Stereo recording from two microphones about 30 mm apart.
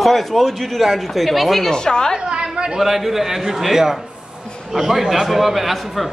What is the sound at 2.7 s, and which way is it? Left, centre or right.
A man's voice, centre.